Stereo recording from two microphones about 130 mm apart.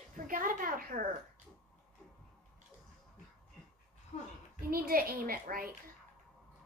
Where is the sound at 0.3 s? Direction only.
90° right.